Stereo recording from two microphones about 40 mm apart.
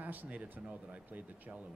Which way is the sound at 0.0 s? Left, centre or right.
Right.